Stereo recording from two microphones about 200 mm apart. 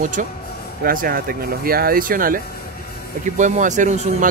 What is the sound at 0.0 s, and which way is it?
Speech, 40° right (ahead or behind).